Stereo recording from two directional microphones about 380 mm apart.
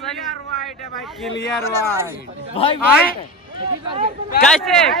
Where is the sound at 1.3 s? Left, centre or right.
Left.